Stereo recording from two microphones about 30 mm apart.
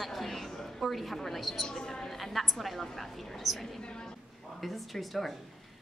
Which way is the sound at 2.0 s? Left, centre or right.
Centre.